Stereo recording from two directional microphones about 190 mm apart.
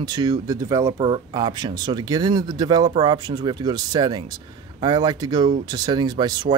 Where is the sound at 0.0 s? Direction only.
20° right (ahead or behind).